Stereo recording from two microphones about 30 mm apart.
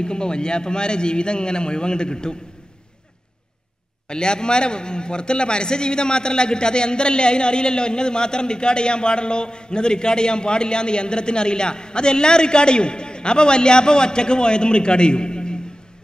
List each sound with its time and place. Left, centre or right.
0.0 s a man's voice: left
4.1 s a man's voice: left